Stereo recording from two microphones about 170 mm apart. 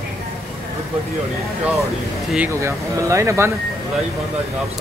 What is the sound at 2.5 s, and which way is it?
Speech, 15° right (ahead or behind).